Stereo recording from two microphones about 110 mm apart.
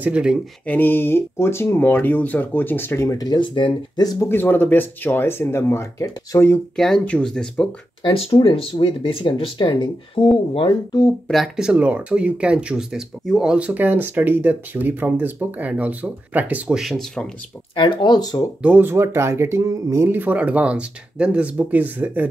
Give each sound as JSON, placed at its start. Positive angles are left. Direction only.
{"t": 0.0, "sound": "speech", "side_deg": -10}
{"t": 0.7, "sound": "speech", "side_deg": 20}
{"t": 4.3, "sound": "speech", "side_deg": 20}
{"t": 6.8, "sound": "speech", "side_deg": 10}
{"t": 8.0, "sound": "speech", "side_deg": 45}
{"t": 11.2, "sound": "speech", "side_deg": 0}
{"t": 17.7, "sound": "speech", "side_deg": 45}
{"t": 18.6, "sound": "speech", "side_deg": -15}